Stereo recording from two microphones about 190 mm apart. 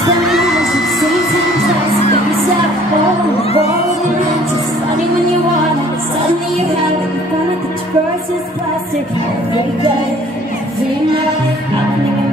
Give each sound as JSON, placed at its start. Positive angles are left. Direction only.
{"t": 0.3, "sound": "music", "side_deg": 0}
{"t": 3.3, "sound": "music", "side_deg": 30}